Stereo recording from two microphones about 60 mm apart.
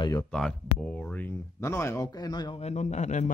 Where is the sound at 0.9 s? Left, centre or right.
Left.